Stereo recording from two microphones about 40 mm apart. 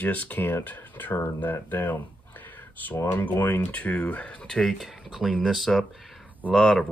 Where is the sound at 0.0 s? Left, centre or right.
Left.